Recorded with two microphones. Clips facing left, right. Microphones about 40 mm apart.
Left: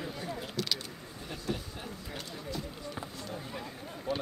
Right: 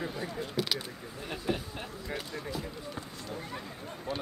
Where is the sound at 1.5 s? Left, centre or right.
Right.